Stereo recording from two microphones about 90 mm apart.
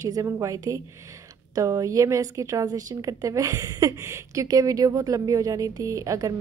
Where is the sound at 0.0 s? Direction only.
35° right (ahead or behind).